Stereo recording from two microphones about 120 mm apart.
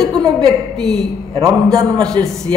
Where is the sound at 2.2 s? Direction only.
40° right (ahead or behind).